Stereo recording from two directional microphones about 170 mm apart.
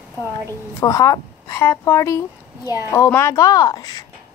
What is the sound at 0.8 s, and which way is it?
Speech, 20° left (ahead or behind).